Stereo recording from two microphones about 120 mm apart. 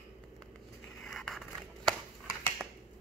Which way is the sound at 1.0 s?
Centre (ahead or behind).